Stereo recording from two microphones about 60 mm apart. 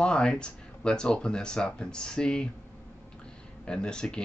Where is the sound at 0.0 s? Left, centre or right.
Centre.